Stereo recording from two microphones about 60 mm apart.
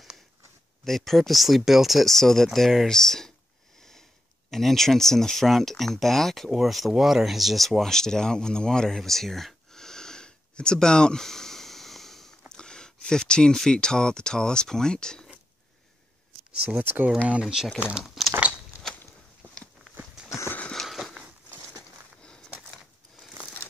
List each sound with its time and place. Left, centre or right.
0.8 s speech: centre
4.5 s speech: centre
16.8 s speech: right
17.3 s speech: centre
18.0 s a sound: centre
20.7 s a sound: centre